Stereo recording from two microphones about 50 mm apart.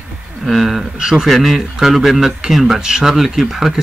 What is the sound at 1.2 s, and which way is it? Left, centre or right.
A man's voice, centre.